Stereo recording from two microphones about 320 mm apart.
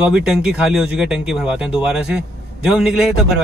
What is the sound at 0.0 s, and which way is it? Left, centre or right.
Speech, centre.